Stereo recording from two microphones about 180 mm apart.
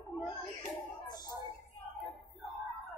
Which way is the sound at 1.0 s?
20° left (ahead or behind).